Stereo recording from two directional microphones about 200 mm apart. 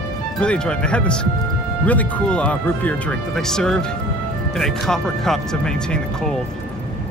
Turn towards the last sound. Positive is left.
turn(degrees=5)  # may be behind; listen again after turning